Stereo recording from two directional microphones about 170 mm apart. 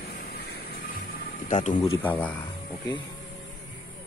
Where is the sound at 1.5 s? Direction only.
40° left (ahead or behind).